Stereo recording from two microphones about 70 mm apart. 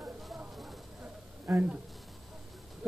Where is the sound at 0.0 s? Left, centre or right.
Centre.